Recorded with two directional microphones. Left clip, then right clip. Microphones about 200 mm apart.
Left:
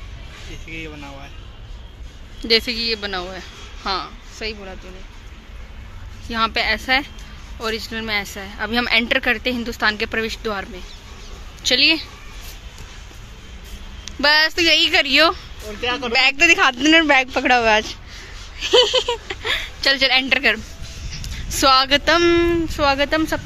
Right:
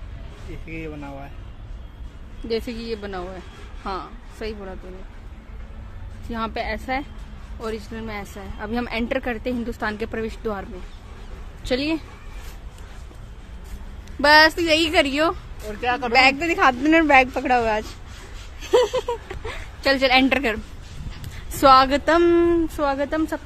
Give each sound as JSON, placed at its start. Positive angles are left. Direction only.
{"t": 0.7, "sound": "speech", "side_deg": -45}
{"t": 2.6, "sound": "speech", "side_deg": -10}
{"t": 4.4, "sound": "speech", "side_deg": -20}
{"t": 6.3, "sound": "speech", "side_deg": -5}
{"t": 14.0, "sound": "speech", "side_deg": -5}